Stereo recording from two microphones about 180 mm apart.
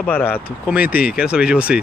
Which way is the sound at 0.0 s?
10° left (ahead or behind).